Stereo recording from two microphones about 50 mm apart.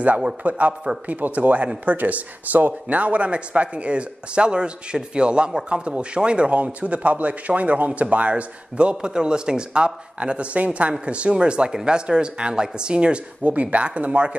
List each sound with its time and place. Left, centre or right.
0.4 s a man's voice: right